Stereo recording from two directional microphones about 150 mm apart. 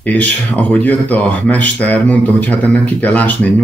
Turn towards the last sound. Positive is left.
turn(degrees=10)  # may be behind; listen again after turning